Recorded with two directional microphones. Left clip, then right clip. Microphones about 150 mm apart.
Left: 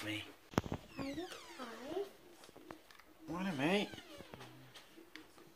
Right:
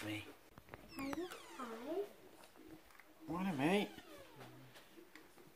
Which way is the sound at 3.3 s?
5° right (ahead or behind).